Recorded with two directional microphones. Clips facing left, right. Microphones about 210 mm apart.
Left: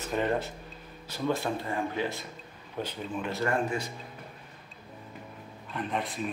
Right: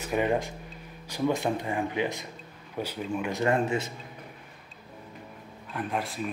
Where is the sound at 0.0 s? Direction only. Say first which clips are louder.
Right 2 dB; 10° right (ahead or behind).